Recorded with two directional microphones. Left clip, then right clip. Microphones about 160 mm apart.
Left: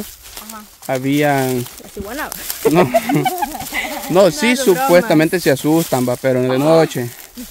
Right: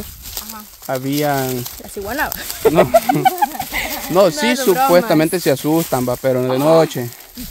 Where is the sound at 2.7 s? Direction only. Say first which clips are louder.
Right 1 dB; 20° left (ahead or behind).